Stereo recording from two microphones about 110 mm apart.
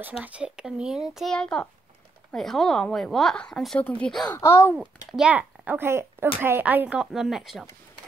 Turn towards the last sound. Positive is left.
turn(degrees=-5)  # may be behind; listen again after turning